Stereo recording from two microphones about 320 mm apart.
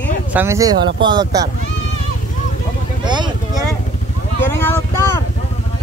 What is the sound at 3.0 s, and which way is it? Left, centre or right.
Vehicle, centre.